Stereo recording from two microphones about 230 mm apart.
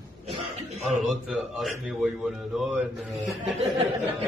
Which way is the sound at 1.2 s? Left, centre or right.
Centre.